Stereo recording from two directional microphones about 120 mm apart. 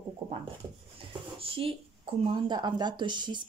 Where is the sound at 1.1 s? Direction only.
50° right (ahead or behind).